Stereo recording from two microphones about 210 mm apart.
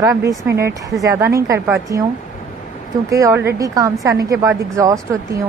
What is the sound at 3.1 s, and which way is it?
A woman's voice, 15° right (ahead or behind).